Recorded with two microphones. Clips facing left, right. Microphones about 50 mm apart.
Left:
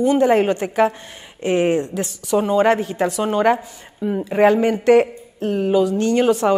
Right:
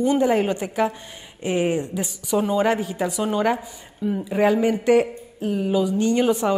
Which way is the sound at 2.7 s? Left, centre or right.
Centre.